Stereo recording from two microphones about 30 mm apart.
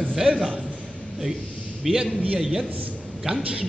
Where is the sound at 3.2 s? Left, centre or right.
Right.